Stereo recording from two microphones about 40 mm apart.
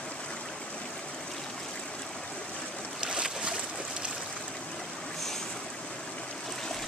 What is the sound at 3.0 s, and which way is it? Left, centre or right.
Boat, right.